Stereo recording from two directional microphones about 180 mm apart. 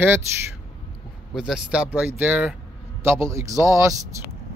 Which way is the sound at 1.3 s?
5° right (ahead or behind).